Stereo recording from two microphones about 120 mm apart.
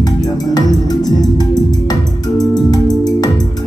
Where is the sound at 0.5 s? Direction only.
35° left (ahead or behind).